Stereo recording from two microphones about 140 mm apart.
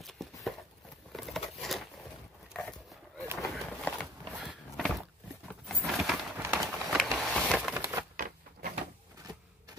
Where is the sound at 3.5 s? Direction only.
5° left (ahead or behind).